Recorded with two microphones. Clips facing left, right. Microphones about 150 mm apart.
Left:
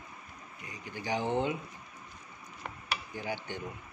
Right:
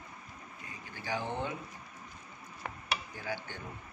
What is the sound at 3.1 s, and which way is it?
Speech, 20° left (ahead or behind).